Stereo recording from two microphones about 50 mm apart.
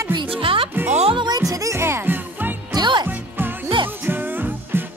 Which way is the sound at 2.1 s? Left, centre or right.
Right.